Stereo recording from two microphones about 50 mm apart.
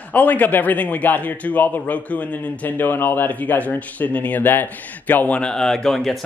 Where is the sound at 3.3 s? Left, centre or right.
Left.